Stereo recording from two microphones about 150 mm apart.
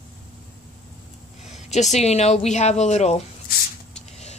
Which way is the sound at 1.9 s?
45° left (ahead or behind).